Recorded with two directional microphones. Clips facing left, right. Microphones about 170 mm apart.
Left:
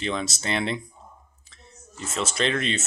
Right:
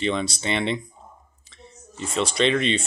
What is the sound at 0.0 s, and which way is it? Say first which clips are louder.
A man's voice: right 4 dB; centre (ahead or behind).